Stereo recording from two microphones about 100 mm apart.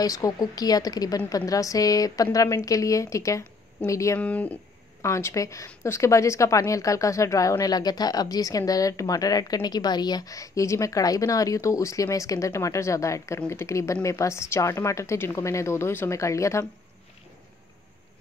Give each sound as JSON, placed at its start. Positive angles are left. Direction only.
{"t": 0.0, "sound": "speech", "side_deg": 35}
{"t": 4.2, "sound": "speech", "side_deg": 15}
{"t": 5.0, "sound": "a woman's voice", "side_deg": 30}